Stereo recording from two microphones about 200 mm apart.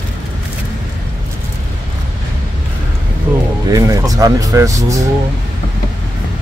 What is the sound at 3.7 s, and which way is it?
Speech, 15° right (ahead or behind).